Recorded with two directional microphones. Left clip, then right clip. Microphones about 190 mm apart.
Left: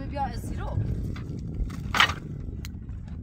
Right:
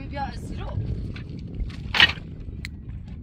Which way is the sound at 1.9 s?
35° left (ahead or behind).